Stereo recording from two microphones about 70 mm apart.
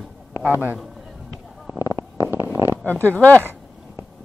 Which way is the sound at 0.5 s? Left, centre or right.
Right.